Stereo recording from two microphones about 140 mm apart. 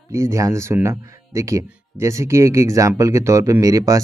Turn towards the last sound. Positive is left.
turn(degrees=-25)  # may be behind; listen again after turning